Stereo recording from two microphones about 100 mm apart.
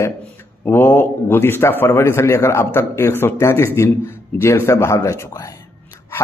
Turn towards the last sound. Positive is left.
turn(degrees=30)  # may be behind; listen again after turning